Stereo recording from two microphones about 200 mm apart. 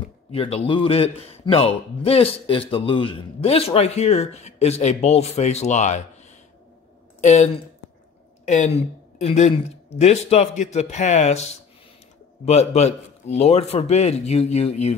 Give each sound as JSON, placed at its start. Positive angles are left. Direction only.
{"t": 0.3, "sound": "a man's voice", "side_deg": 30}
{"t": 7.2, "sound": "a man's voice", "side_deg": 35}
{"t": 12.4, "sound": "a man's voice", "side_deg": 35}